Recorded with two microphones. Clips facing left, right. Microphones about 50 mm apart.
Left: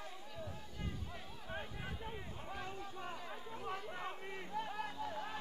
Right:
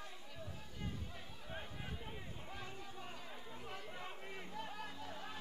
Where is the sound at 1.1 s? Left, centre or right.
Centre.